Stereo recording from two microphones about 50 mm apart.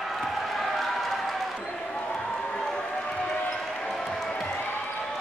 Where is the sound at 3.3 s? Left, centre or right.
Centre.